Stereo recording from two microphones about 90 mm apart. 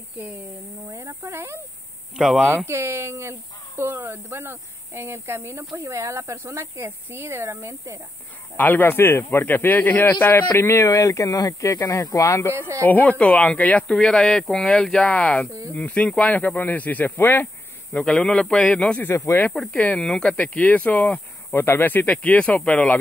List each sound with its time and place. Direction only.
0.9 s speech: 35° right (ahead or behind)
2.1 s speech: 5° right (ahead or behind)
2.5 s speech: 30° right (ahead or behind)
8.5 s speech: 20° left (ahead or behind)
12.5 s speech: 30° right (ahead or behind)
12.8 s speech: 20° left (ahead or behind)
17.9 s speech: 10° left (ahead or behind)
19.0 s speech: 30° left (ahead or behind)
19.5 s speech: 10° left (ahead or behind)